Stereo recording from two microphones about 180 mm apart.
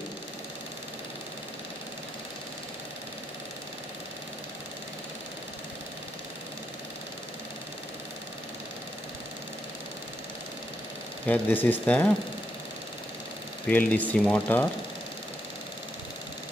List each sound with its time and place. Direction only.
11.2 s speech: 10° left (ahead or behind)
13.7 s speech: 10° left (ahead or behind)